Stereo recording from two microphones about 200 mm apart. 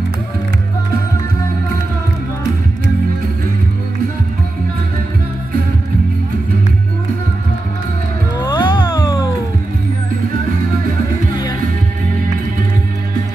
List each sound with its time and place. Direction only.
8.5 s music: 25° left (ahead or behind)